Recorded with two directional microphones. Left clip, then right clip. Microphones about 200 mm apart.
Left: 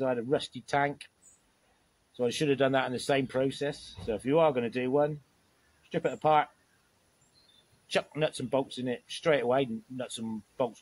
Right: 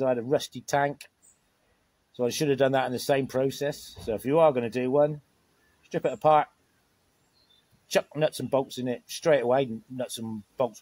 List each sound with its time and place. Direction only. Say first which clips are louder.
0.0 s speech: right 4 dB; 45° right (ahead or behind)
2.1 s speech: right 3 dB; 45° right (ahead or behind)
7.9 s speech: right 4 dB; 45° right (ahead or behind)